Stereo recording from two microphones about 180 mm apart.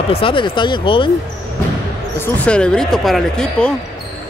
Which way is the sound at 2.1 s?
10° left (ahead or behind).